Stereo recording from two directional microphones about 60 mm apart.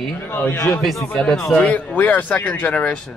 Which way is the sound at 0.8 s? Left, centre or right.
Centre.